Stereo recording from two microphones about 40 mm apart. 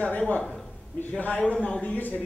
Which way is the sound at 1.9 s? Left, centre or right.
Left.